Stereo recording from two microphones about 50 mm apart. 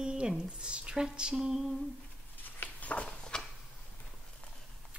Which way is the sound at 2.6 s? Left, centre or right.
Left.